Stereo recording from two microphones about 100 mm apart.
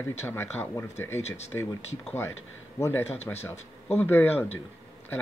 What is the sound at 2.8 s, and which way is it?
Speech, 25° left (ahead or behind).